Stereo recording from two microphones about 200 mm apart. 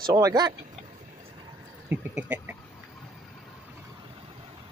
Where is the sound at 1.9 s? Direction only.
10° right (ahead or behind).